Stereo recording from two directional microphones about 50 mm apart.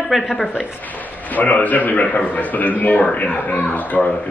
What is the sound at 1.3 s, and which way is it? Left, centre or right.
Speech, left.